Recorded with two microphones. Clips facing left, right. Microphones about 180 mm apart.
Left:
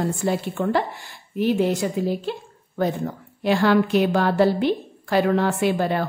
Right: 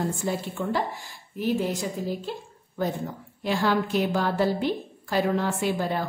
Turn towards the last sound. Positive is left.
turn(degrees=70)  # may be behind; listen again after turning